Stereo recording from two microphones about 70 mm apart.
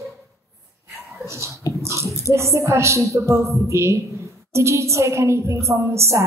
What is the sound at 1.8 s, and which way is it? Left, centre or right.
Bathtub, right.